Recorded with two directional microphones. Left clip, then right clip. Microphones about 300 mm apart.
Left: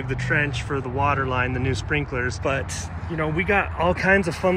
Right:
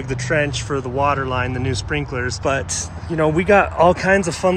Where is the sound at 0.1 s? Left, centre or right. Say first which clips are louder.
Right 4 dB; centre.